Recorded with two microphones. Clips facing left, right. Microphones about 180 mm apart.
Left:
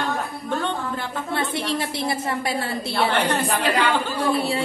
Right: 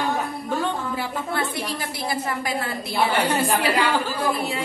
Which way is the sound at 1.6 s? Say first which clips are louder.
Left 4 dB; 25° left (ahead or behind).